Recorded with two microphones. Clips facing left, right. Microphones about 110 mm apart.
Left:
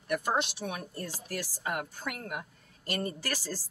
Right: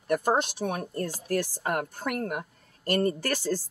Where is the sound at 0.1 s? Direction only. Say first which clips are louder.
Right 5 dB; 45° right (ahead or behind).